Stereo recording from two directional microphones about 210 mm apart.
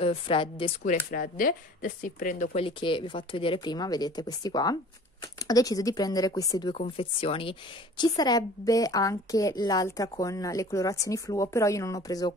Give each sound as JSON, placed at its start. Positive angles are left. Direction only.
{"t": 0.0, "sound": "speech", "side_deg": 25}
{"t": 0.8, "sound": "a woman's voice", "side_deg": 40}